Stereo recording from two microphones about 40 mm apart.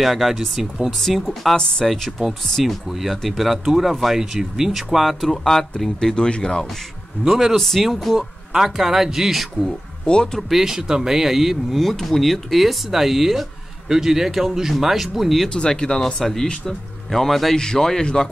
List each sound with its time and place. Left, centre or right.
0.0 s speech: centre
0.9 s speech: centre
2.6 s speech: centre
4.9 s speech: centre
6.1 s speech: left
7.2 s speech: centre
7.5 s speech: centre
10.0 s speech: left
10.5 s speech: centre
11.8 s speech: centre
15.5 s speech: left; by 17.6 s centre
17.6 s speech: centre